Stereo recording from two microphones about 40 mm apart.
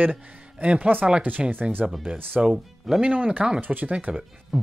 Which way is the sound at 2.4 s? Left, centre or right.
Right.